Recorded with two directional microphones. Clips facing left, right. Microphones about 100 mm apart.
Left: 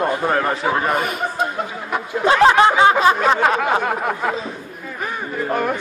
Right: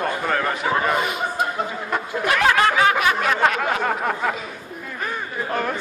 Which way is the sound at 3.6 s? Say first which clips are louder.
Left 3 dB; 5° left (ahead or behind).